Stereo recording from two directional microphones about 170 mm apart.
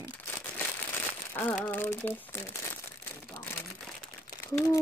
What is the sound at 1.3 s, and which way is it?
Speech, 10° left (ahead or behind).